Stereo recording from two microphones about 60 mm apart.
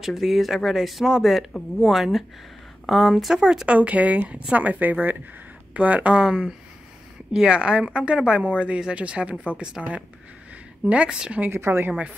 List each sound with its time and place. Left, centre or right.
0.0 s speech: centre
3.6 s speech: right
11.5 s a woman's voice: right